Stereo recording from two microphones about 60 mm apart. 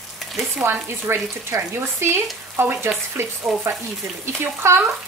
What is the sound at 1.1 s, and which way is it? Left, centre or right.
Speech, right.